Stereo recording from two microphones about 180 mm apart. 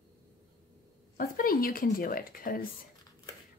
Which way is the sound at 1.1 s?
50° left (ahead or behind).